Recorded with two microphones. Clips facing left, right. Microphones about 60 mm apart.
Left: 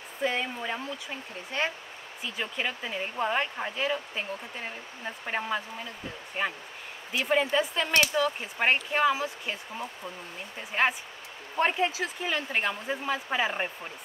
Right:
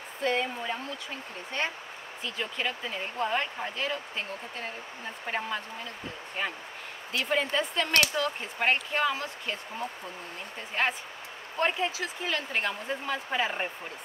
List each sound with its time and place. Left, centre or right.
0.2 s speech: centre
2.2 s speech: centre
11.5 s speech: left
12.4 s speech: centre